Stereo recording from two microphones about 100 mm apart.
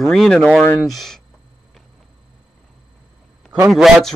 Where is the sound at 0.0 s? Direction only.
5° left (ahead or behind).